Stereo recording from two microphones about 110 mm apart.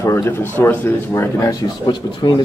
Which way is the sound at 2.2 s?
45° left (ahead or behind).